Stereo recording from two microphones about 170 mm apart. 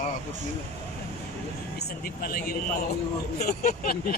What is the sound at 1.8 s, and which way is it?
Speech, 60° left (ahead or behind).